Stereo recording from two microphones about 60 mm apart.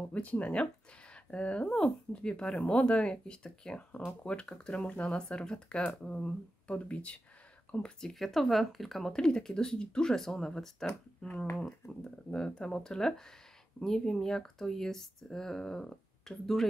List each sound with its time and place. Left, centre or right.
0.1 s speech: left
7.8 s speech: centre
12.0 s speech: centre